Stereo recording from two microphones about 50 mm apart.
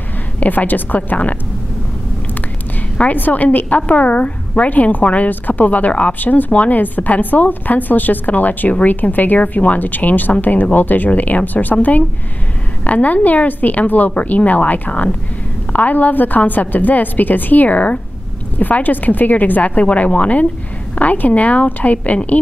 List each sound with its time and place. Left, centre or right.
0.4 s a woman's voice: left
3.0 s a woman's voice: left